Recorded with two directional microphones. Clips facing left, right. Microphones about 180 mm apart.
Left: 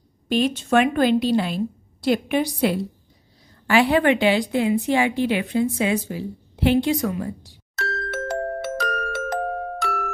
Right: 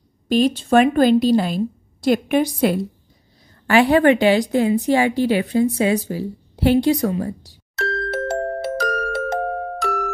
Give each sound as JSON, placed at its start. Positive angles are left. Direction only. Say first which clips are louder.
{"t": 0.3, "sound": "a woman's voice", "louder": "right 4 dB", "side_deg": -35}
{"t": 7.7, "sound": "glockenspiel", "louder": "right 5 dB", "side_deg": 0}